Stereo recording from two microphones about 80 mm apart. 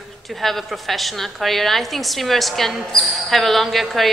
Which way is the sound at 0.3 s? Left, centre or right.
Centre.